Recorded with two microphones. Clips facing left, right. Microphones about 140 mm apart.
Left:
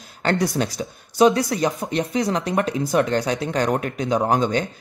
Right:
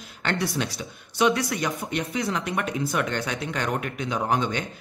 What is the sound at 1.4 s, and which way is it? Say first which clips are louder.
Speech: left 6 dB; 25° left (ahead or behind).